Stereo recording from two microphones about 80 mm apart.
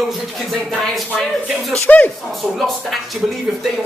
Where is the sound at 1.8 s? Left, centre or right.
Centre.